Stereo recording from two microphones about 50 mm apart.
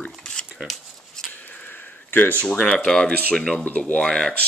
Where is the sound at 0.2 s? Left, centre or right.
Centre.